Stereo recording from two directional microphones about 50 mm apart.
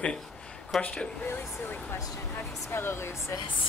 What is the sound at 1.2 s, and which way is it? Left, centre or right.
Speech, left.